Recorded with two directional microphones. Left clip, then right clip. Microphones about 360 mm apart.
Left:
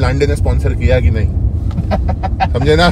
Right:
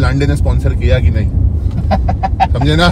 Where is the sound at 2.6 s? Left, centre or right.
Centre.